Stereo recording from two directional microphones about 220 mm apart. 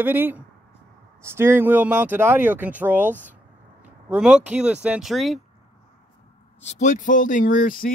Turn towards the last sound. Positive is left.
turn(degrees=40)  # may be behind; listen again after turning